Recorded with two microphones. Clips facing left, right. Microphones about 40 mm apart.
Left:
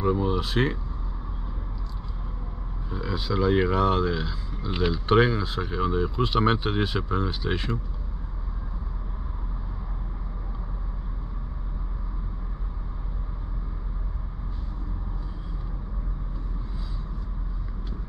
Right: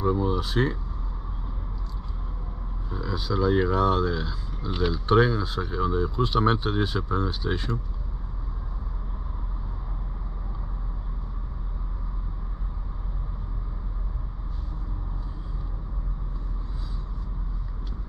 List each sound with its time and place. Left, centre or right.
0.0 s speech: left
3.0 s speech: left
4.2 s speech: left